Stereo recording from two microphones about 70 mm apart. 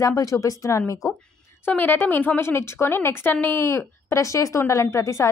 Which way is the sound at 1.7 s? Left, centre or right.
Left.